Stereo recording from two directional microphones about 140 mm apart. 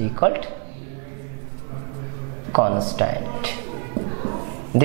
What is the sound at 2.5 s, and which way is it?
Speech, 5° right (ahead or behind).